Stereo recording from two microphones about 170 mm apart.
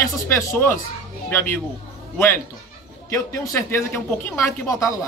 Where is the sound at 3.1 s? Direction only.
15° left (ahead or behind).